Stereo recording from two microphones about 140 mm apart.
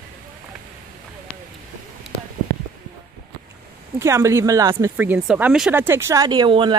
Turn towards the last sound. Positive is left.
turn(degrees=-35)  # may be behind; listen again after turning